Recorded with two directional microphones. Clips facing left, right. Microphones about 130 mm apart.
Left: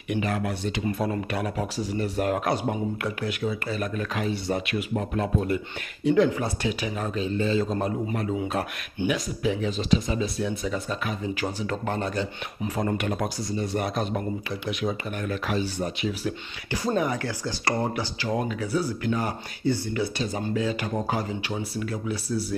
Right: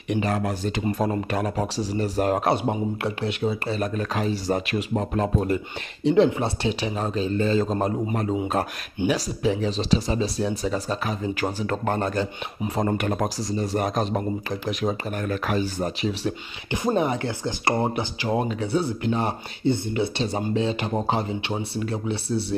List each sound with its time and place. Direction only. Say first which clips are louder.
0.1 s speech: right 3 dB; 35° right (ahead or behind)
6.0 s speech: right 2 dB; 25° right (ahead or behind)
7.3 s speech: right 2 dB; 45° right (ahead or behind)
11.3 s speech: right 3 dB; 50° right (ahead or behind)
12.6 s speech: right 3 dB; 30° right (ahead or behind)
12.9 s speech: right 3 dB; 45° right (ahead or behind)
16.1 s speech: right 2 dB; 30° right (ahead or behind)